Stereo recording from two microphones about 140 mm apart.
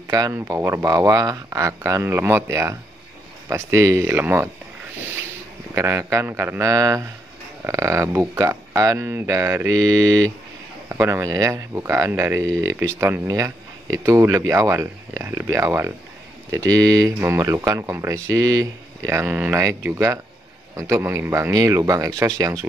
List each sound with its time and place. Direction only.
0.1 s speech: 20° right (ahead or behind)
5.8 s speech: 20° right (ahead or behind)